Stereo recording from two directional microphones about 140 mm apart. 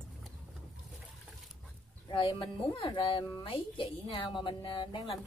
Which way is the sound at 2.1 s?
35° left (ahead or behind).